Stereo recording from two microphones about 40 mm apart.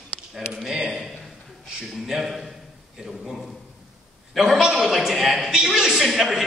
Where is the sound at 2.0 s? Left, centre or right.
Centre.